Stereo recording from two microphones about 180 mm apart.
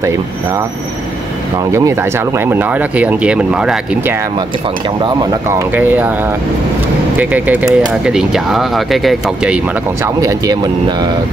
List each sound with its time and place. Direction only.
1.7 s speech: 15° right (ahead or behind)
5.0 s speech: 25° right (ahead or behind)
5.8 s speech: 10° right (ahead or behind)
7.2 s speech: 10° right (ahead or behind)
10.2 s speech: 20° right (ahead or behind)